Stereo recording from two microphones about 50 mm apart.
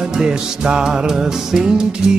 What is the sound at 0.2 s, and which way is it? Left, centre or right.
Music, centre.